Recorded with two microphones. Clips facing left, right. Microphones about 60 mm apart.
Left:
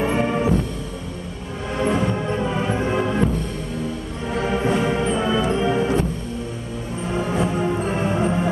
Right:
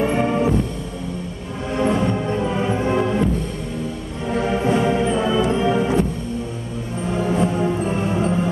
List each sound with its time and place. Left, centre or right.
0.0 s music: centre
1.8 s music: centre
4.3 s music: centre
7.2 s music: centre